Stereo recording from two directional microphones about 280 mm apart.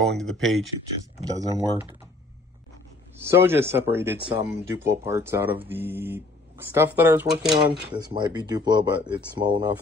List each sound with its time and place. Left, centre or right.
0.0 s speech: centre
1.2 s speech: centre
3.2 s speech: centre